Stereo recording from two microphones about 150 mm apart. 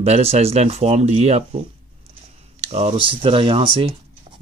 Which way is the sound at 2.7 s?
45° right (ahead or behind).